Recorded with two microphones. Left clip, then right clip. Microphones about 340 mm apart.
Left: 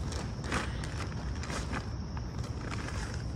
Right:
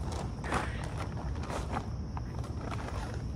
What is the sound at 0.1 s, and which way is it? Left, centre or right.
Mechanisms, centre.